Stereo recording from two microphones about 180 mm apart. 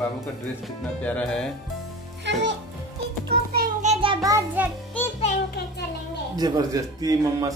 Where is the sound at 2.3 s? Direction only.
70° right (ahead or behind).